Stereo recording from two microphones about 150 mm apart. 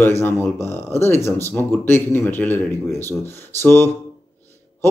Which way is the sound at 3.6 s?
15° left (ahead or behind).